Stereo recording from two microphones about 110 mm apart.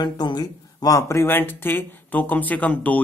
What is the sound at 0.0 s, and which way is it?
Speech, 40° left (ahead or behind).